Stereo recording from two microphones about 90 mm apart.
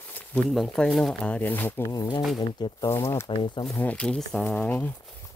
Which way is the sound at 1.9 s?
55° left (ahead or behind).